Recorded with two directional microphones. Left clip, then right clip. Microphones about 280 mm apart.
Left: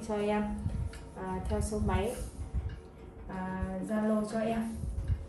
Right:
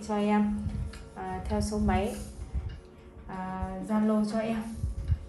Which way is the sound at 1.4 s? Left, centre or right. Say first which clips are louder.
Right 5 dB; centre.